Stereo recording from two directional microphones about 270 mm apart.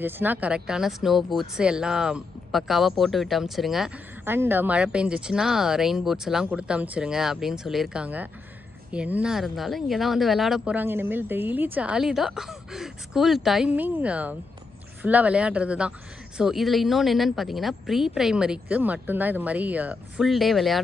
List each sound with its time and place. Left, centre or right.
0.0 s speech: centre